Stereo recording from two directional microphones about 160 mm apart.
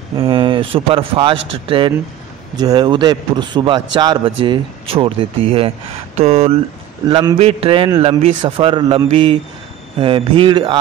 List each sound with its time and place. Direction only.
0.2 s a man's voice: 30° right (ahead or behind)
7.1 s a man's voice: 30° right (ahead or behind)
7.3 s speech: 40° right (ahead or behind)